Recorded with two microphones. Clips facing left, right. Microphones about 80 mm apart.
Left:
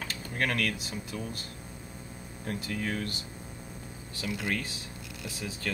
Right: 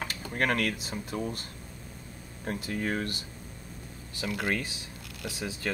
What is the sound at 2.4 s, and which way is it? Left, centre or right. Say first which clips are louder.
Speech: right 2 dB; right.